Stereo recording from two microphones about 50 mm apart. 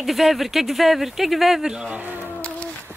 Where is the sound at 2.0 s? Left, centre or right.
Right.